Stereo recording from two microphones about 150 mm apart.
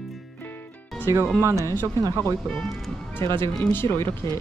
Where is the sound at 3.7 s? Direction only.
15° left (ahead or behind).